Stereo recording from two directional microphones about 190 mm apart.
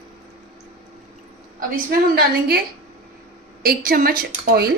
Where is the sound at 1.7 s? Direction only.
55° right (ahead or behind).